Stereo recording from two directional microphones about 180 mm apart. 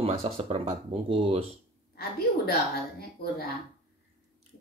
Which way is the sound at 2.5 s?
55° left (ahead or behind).